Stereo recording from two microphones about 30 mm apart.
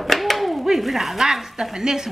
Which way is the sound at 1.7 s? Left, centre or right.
Right.